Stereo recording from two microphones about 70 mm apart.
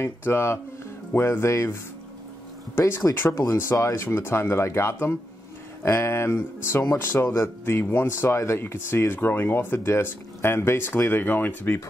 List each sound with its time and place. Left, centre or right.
0.0 s speech: left
3.3 s speech: left
3.9 s speech: left